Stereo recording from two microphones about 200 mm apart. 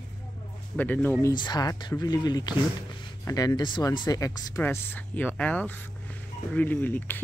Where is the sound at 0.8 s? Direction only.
10° left (ahead or behind).